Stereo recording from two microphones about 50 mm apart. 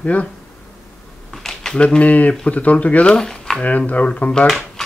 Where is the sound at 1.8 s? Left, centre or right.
Left.